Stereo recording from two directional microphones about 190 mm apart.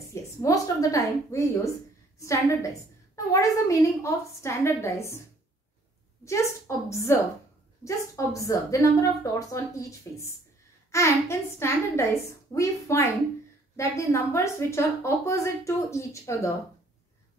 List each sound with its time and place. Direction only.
0.1 s a woman's voice: 15° left (ahead or behind)
6.7 s a woman's voice: 15° left (ahead or behind)